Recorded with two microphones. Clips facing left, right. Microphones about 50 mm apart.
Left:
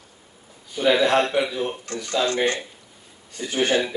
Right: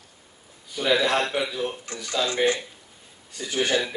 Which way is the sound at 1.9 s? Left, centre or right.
Centre.